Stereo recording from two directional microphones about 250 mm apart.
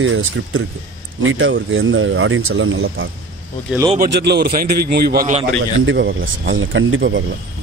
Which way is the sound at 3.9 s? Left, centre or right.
Right.